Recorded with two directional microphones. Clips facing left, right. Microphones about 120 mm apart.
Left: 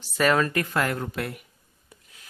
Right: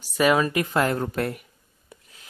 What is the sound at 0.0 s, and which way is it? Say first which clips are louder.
Speech: right 2 dB; 10° right (ahead or behind).